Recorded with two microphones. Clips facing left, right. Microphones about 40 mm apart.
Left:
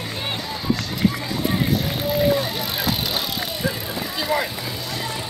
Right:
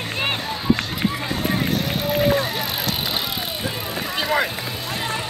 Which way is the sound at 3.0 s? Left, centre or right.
Centre.